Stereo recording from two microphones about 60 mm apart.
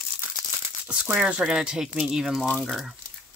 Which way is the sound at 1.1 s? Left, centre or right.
Centre.